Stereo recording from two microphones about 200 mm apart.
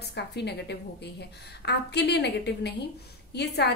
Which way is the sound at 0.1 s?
55° left (ahead or behind).